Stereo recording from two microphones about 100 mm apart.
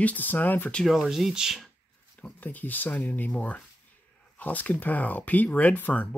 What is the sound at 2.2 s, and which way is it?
Speech, 15° left (ahead or behind).